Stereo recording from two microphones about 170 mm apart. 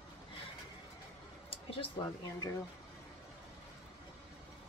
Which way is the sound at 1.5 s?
35° left (ahead or behind).